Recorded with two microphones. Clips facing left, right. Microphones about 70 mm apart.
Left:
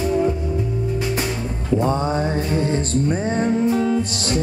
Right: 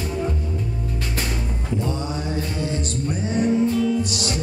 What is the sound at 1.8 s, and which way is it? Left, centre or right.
Music, left.